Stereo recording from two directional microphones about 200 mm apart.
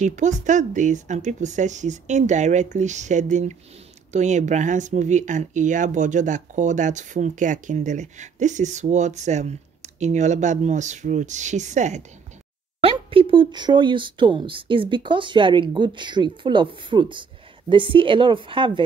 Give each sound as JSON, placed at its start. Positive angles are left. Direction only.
{"t": 0.0, "sound": "speech", "side_deg": -35}